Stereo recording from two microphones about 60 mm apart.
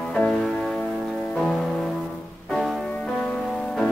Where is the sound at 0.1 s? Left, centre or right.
Centre.